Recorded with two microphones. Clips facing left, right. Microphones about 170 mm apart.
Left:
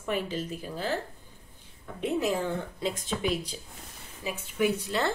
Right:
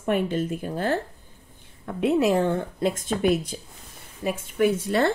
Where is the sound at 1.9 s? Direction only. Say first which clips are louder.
Right 7 dB; 70° right (ahead or behind).